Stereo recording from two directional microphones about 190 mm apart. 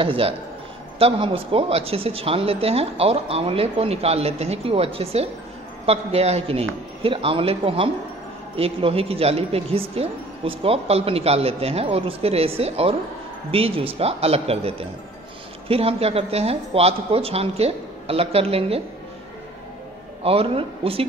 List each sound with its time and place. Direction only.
0.0 s speech: 30° right (ahead or behind)
20.2 s speech: 30° right (ahead or behind)